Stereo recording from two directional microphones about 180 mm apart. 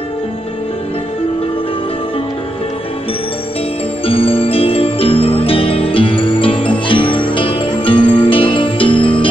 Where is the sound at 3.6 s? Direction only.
30° left (ahead or behind).